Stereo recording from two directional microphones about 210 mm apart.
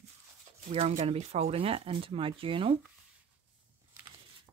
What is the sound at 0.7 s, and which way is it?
Speech, 30° right (ahead or behind).